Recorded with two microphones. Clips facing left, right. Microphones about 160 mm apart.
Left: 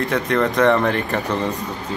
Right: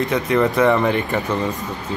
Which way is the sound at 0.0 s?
5° right (ahead or behind).